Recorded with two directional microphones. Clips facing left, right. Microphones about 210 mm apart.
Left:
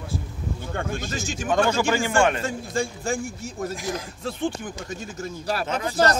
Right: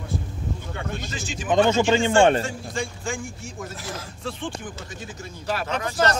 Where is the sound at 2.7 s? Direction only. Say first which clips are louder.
Left 4 dB; 40° left (ahead or behind).